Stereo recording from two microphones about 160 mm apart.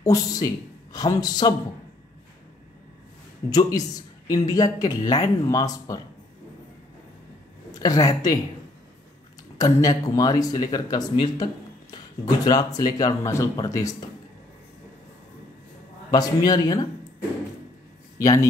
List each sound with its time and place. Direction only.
0.0 s speech: 20° left (ahead or behind)
3.4 s speech: 25° left (ahead or behind)
7.8 s speech: 25° left (ahead or behind)
9.6 s speech: 20° left (ahead or behind)
16.1 s speech: 25° left (ahead or behind)
18.2 s speech: 20° left (ahead or behind)